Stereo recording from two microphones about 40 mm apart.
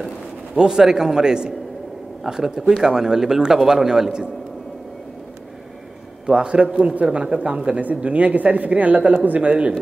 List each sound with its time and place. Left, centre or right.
0.6 s a man's voice: centre
6.2 s a man's voice: right